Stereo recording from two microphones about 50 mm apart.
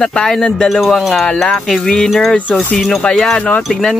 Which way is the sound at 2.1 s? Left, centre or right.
Centre.